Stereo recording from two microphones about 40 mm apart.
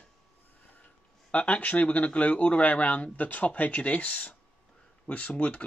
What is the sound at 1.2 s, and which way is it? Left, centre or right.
Speech, left.